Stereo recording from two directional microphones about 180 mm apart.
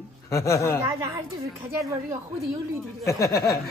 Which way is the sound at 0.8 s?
15° right (ahead or behind).